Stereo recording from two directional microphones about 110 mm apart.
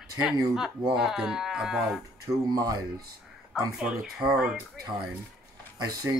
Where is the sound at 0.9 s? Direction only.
5° right (ahead or behind).